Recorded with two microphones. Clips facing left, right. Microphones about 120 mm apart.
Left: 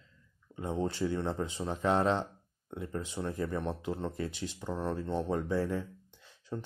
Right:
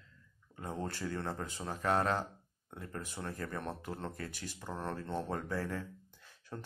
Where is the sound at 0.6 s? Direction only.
20° left (ahead or behind).